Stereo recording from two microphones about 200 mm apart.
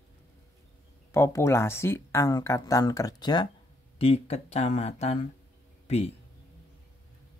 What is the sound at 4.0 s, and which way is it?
Speech, 30° left (ahead or behind).